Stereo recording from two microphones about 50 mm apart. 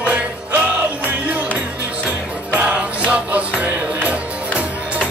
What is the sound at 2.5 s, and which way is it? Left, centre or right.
Music, right.